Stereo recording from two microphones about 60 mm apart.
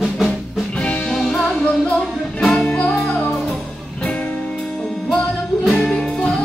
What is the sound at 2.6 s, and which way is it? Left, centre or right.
Music, left.